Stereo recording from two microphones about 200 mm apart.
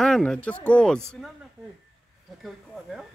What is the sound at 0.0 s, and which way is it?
Speech, centre (ahead or behind).